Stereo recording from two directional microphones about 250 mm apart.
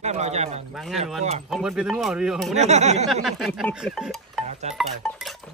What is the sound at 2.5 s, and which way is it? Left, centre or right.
Speech, right.